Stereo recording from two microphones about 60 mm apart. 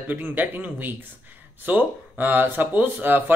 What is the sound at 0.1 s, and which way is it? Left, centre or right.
Speech, right.